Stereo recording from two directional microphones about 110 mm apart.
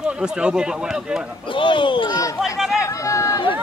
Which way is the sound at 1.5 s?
50° left (ahead or behind).